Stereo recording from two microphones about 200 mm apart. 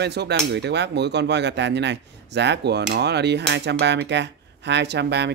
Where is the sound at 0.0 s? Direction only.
55° right (ahead or behind).